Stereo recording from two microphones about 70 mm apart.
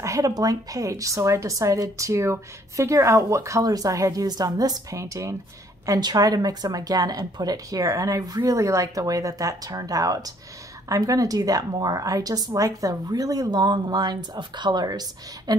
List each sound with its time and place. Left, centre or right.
0.0 s a sound: right
0.3 s a woman's voice: right
5.9 s a woman's voice: right